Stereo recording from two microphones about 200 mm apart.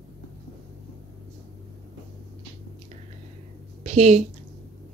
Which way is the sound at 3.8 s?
35° right (ahead or behind).